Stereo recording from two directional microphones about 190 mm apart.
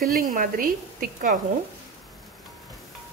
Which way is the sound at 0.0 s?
50° right (ahead or behind).